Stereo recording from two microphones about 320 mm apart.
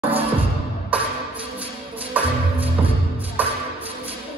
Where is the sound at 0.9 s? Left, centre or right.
Centre.